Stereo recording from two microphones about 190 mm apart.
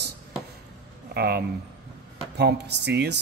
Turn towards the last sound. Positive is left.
turn(degrees=-65)  # may be behind; listen again after turning